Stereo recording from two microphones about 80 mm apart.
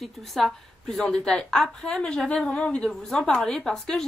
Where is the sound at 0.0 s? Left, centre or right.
Centre.